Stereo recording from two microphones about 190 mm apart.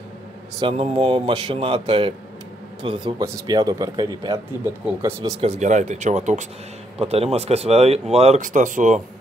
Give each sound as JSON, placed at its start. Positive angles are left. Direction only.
{"t": 0.6, "sound": "a man's voice", "side_deg": -30}
{"t": 4.8, "sound": "speech", "side_deg": -10}
{"t": 5.4, "sound": "speech", "side_deg": -35}